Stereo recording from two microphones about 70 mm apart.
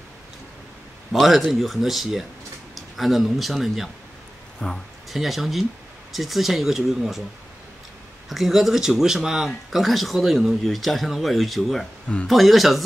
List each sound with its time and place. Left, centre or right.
1.1 s speech: centre
4.6 s speech: centre
5.1 s speech: centre
8.3 s speech: centre